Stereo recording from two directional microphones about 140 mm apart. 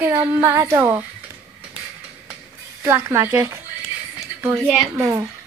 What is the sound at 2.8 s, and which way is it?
Female singing, 20° right (ahead or behind).